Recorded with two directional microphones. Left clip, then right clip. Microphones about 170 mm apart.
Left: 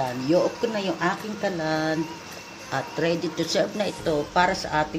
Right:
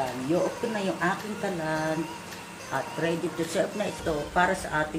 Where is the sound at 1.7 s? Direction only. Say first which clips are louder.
Left 3 dB; 70° left (ahead or behind).